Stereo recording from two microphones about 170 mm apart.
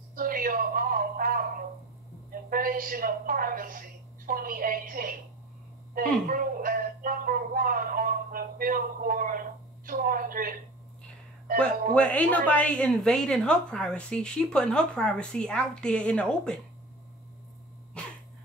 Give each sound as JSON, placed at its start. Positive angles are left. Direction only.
{"t": 0.1, "sound": "a sound", "side_deg": -55}
{"t": 2.5, "sound": "speech", "side_deg": -55}
{"t": 11.9, "sound": "a woman's voice", "side_deg": 10}